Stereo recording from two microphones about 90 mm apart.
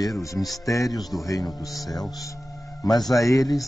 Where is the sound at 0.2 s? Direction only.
35° left (ahead or behind).